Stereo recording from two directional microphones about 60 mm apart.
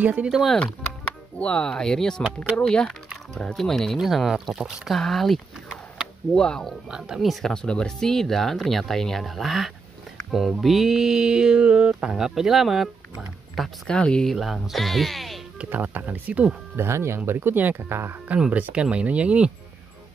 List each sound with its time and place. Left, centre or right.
0.0 s speech: right
0.6 s speech: centre
6.9 s a sound: centre
7.4 s speech: centre
10.3 s a sound: centre
13.8 s speech: centre
14.2 s speech: centre
15.7 s speech: right
16.7 s speech: right
17.3 s speech: right
18.3 s speech: right